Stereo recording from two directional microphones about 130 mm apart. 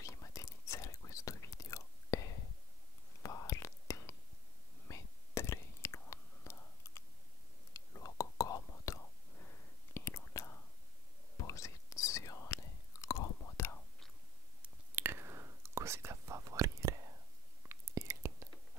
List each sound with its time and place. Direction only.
0.0 s whispering: 25° left (ahead or behind)
14.6 s whispering: 15° right (ahead or behind)